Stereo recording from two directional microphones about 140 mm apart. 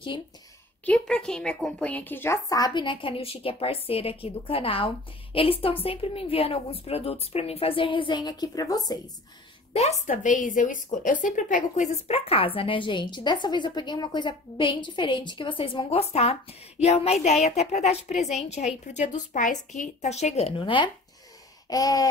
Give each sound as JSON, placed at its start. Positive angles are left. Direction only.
{"t": 0.8, "sound": "a woman's voice", "side_deg": 5}
{"t": 9.8, "sound": "a woman's voice", "side_deg": 55}
{"t": 21.6, "sound": "a sound", "side_deg": 25}